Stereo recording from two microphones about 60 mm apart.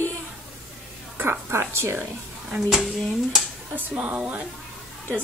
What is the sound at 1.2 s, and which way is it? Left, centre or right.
Speech, right.